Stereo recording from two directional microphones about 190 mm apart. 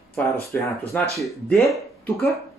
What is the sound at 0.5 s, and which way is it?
Speech, 5° left (ahead or behind).